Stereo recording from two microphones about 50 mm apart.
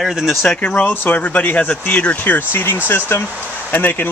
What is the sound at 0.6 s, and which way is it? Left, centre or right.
Speech, left.